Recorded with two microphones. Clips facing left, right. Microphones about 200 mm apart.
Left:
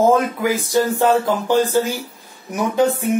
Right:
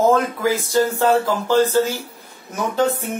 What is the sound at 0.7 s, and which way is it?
Speech, 15° left (ahead or behind).